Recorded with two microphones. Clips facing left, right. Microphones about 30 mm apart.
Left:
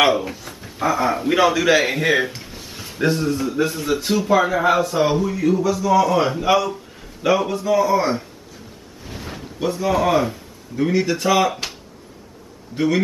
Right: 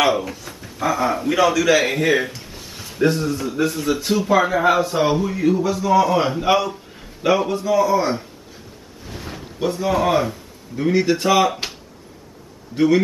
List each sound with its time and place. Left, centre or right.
0.1 s speech: centre
1.3 s a man's voice: left; by 8.3 s centre
9.0 s a sound: centre
9.6 s a man's voice: centre
10.9 s speech: centre
12.7 s a man's voice: centre